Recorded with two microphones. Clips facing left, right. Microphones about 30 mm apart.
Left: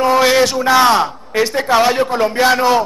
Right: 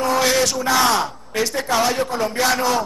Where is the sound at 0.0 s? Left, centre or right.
Left.